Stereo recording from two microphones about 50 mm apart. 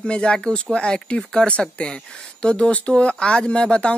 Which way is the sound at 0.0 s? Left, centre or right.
Centre.